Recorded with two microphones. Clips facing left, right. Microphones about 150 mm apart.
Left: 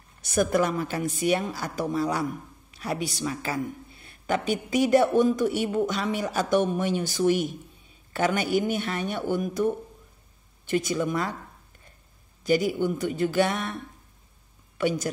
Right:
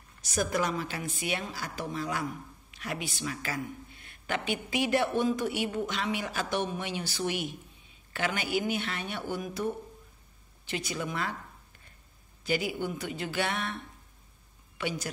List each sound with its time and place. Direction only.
0.2 s speech: 55° left (ahead or behind)
12.5 s speech: 45° left (ahead or behind)
14.8 s speech: 45° left (ahead or behind)